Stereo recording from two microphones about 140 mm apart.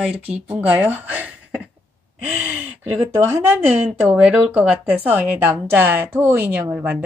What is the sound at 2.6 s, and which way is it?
Speech, 15° right (ahead or behind).